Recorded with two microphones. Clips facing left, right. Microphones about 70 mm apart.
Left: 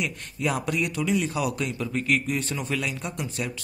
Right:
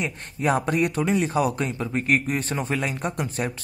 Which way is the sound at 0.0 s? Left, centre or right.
Right.